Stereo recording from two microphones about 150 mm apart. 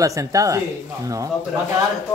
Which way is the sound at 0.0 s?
20° right (ahead or behind).